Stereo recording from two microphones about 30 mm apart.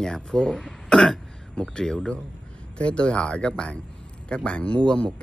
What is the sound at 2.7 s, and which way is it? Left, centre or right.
Speech, left.